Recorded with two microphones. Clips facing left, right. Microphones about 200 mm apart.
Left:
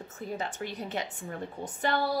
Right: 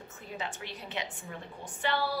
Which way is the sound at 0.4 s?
40° left (ahead or behind).